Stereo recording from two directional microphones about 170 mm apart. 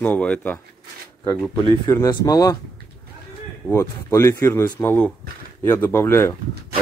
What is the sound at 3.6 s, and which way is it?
Speech, 15° left (ahead or behind).